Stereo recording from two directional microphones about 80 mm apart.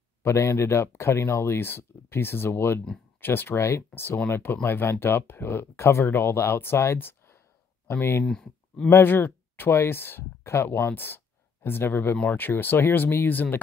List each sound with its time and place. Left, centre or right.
0.2 s speech: left
8.3 s speech: centre
8.9 s speech: left